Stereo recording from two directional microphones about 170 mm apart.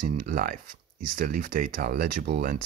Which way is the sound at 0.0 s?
55° right (ahead or behind).